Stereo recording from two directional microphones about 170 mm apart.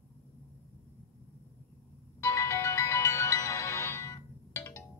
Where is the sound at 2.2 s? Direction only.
15° left (ahead or behind).